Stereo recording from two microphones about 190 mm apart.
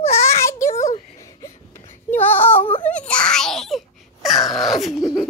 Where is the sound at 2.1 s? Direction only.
10° left (ahead or behind).